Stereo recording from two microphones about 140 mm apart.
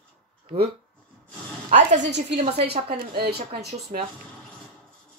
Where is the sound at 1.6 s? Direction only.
65° right (ahead or behind).